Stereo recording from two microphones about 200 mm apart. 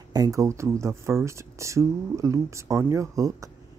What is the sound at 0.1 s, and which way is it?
Speech, 15° right (ahead or behind).